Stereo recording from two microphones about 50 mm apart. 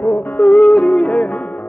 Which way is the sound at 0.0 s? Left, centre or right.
Left.